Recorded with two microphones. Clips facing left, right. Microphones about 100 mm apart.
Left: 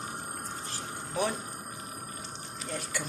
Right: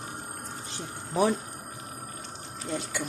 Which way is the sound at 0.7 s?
30° right (ahead or behind).